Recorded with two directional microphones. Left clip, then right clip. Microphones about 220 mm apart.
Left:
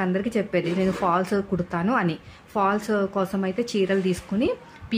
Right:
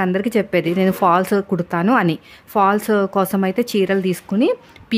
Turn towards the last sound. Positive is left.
turn(degrees=-40)  # may be behind; listen again after turning